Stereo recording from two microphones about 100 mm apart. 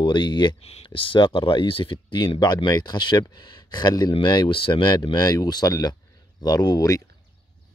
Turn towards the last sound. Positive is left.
turn(degrees=35)  # may be behind; listen again after turning